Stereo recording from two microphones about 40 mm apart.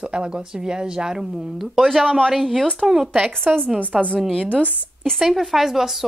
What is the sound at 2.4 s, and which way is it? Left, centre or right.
Speech, centre.